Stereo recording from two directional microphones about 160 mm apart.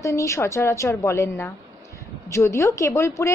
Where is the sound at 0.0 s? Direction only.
20° left (ahead or behind).